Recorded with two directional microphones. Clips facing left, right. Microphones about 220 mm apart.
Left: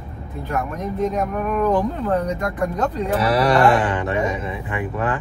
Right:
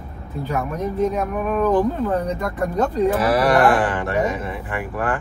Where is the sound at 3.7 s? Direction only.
20° left (ahead or behind).